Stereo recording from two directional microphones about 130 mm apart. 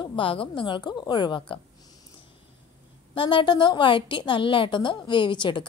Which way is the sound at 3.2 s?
40° left (ahead or behind).